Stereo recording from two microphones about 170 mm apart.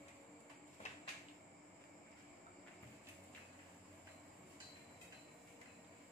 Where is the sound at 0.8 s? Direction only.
40° left (ahead or behind).